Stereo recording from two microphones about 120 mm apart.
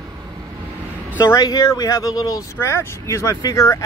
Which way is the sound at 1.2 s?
30° left (ahead or behind).